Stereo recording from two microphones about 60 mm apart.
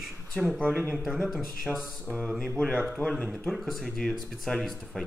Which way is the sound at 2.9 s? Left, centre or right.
Left.